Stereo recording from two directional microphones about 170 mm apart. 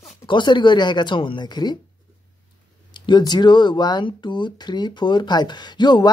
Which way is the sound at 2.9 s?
25° left (ahead or behind).